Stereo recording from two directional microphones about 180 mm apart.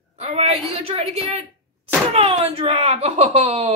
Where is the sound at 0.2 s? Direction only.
35° right (ahead or behind).